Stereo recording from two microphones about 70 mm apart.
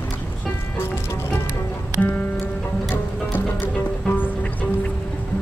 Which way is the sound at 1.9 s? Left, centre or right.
Left.